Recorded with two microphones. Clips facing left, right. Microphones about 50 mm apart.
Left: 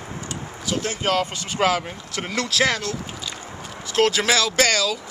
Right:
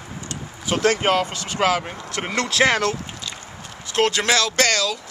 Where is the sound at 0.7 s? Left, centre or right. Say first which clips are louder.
Right 2 dB; right.